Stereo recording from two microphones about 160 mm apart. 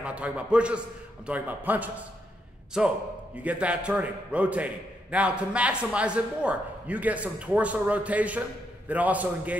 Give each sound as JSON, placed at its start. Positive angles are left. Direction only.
{"t": 0.0, "sound": "a man's voice", "side_deg": -5}